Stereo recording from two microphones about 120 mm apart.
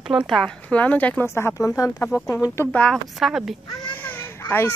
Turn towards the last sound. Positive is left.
turn(degrees=20)  # may be behind; listen again after turning